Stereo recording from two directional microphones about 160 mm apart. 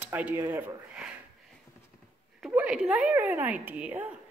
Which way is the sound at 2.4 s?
10° right (ahead or behind).